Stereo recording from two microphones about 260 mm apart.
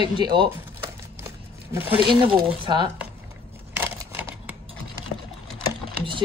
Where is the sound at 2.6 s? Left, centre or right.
Centre.